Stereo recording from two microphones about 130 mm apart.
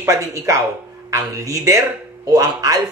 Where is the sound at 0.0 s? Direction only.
25° right (ahead or behind).